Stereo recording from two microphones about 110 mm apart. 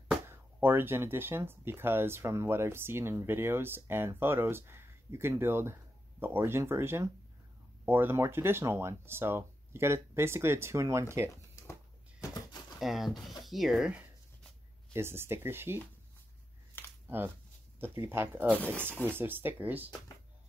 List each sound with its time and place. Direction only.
0.3 s speech: 20° right (ahead or behind)
12.7 s speech: centre (ahead or behind)
14.9 s speech: 20° right (ahead or behind)
17.7 s speech: 20° right (ahead or behind)